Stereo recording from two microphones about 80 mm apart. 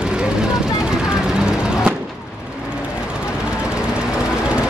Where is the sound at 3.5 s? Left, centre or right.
Centre.